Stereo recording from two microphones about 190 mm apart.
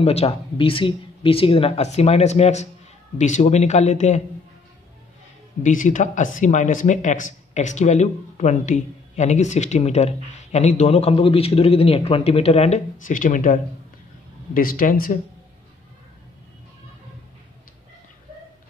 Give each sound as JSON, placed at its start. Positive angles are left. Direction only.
{"t": 0.0, "sound": "speech", "side_deg": 30}
{"t": 5.6, "sound": "speech", "side_deg": 40}